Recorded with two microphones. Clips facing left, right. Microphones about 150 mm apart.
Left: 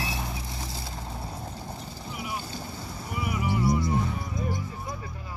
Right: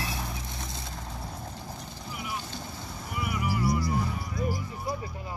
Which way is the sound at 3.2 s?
25° left (ahead or behind).